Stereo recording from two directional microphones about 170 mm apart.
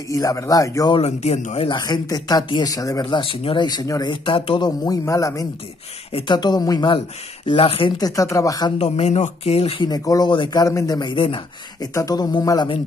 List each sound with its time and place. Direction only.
0.1 s speech: 20° left (ahead or behind)
1.0 s speech: 40° left (ahead or behind)
1.8 s speech: 20° left (ahead or behind)
8.7 s speech: 40° left (ahead or behind)
9.8 s speech: 20° left (ahead or behind)
11.9 s speech: 20° left (ahead or behind)